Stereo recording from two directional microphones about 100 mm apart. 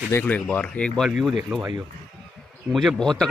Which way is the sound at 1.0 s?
Centre (ahead or behind).